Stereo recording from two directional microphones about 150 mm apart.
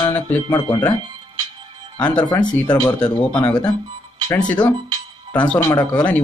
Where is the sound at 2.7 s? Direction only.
25° left (ahead or behind).